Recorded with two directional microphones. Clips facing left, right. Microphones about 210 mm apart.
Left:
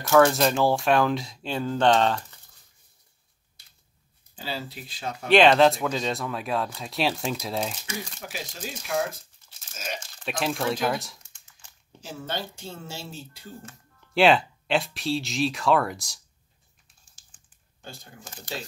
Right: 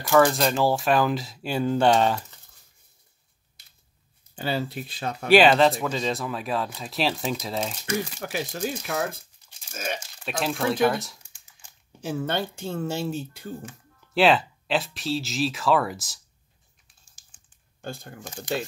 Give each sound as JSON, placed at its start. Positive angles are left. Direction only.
{"t": 0.1, "sound": "speech", "side_deg": 0}
{"t": 4.4, "sound": "speech", "side_deg": -60}
{"t": 5.3, "sound": "speech", "side_deg": -5}
{"t": 8.3, "sound": "speech", "side_deg": -60}
{"t": 9.9, "sound": "speech", "side_deg": -5}
{"t": 12.0, "sound": "speech", "side_deg": -55}
{"t": 14.1, "sound": "speech", "side_deg": 0}